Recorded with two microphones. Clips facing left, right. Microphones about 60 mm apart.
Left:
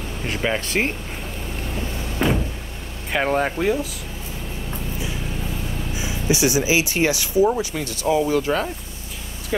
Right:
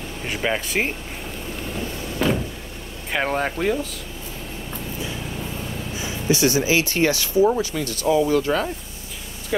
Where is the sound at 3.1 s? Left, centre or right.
Centre.